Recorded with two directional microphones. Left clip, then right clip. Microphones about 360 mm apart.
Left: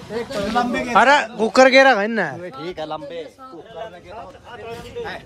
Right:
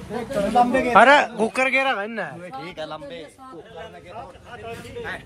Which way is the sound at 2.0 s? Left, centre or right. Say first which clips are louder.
Left 7 dB; left.